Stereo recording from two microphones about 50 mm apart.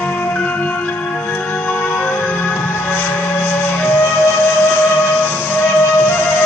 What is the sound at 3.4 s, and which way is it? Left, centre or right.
Music, left.